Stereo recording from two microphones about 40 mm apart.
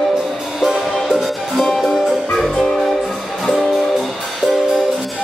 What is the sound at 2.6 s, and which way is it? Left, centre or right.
Music, centre.